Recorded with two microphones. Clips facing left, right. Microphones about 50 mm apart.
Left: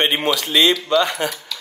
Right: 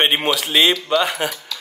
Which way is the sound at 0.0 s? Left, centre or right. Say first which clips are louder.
Right 1 dB; centre.